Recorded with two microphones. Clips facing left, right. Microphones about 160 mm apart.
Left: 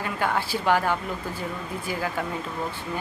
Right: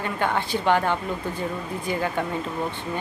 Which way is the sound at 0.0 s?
5° left (ahead or behind).